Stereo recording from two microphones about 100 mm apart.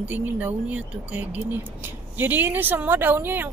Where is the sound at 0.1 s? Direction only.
15° right (ahead or behind).